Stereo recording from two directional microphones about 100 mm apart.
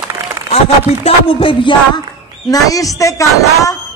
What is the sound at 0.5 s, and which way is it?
Speech, 85° left.